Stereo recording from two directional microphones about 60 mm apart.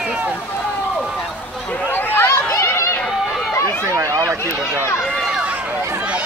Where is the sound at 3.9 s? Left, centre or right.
Right.